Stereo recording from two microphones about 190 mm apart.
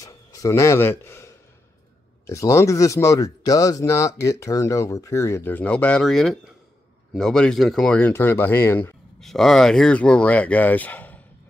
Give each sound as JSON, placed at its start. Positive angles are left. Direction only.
{"t": 0.0, "sound": "speech", "side_deg": 15}
{"t": 9.2, "sound": "speech", "side_deg": 0}